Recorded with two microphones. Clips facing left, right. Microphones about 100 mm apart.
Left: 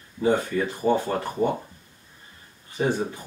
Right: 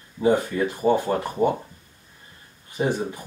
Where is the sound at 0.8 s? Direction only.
25° right (ahead or behind).